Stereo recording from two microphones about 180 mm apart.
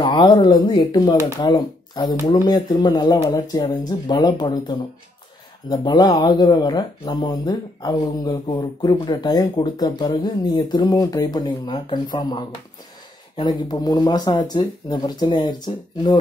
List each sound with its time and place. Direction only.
0.0 s speech: 25° left (ahead or behind)